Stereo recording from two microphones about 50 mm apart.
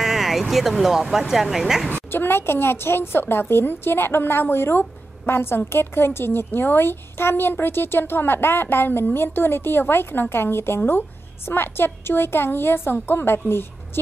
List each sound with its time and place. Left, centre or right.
0.0 s speech: centre
2.0 s a woman's voice: left